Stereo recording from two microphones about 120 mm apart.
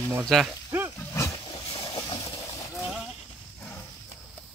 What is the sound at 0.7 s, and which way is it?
Roaring cats, 15° right (ahead or behind).